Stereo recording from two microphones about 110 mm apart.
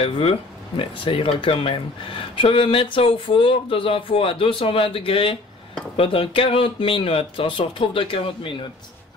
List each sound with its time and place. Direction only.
0.0 s speech: 60° left (ahead or behind)